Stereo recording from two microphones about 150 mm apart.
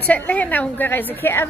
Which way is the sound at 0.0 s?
10° left (ahead or behind).